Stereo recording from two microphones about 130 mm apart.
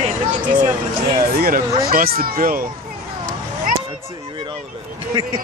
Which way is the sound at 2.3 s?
90° right.